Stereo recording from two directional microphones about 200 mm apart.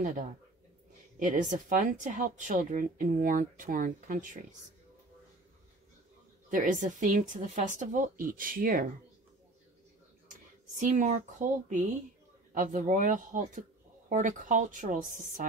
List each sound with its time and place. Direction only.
0.0 s speech: 40° right (ahead or behind)
6.5 s speech: 40° right (ahead or behind)
10.8 s speech: 40° right (ahead or behind)